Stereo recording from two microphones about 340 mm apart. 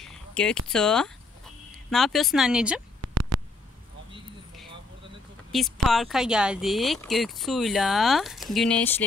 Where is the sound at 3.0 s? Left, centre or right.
Right.